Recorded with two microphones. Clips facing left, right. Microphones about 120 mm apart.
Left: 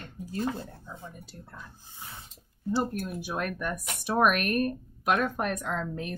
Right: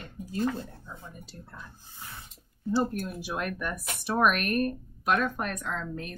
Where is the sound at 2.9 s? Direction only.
Centre (ahead or behind).